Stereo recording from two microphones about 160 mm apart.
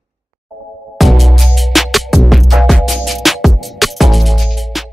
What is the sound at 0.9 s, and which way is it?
Music, centre (ahead or behind).